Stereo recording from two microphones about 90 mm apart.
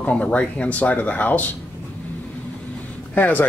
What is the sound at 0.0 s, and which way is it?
Speech, 15° left (ahead or behind).